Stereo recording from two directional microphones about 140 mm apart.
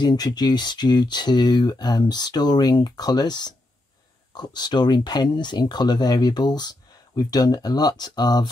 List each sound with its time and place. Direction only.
0.0 s speech: 30° left (ahead or behind)